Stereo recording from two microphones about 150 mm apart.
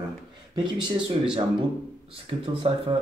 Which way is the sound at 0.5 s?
30° right (ahead or behind).